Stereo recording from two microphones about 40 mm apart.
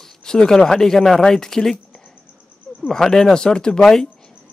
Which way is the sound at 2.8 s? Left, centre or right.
Centre.